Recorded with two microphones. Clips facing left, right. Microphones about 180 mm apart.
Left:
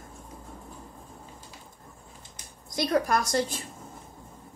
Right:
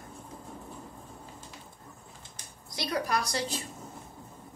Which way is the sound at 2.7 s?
45° left (ahead or behind).